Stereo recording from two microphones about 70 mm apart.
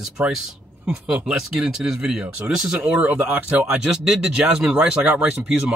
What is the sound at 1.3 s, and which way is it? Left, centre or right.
Speech, centre.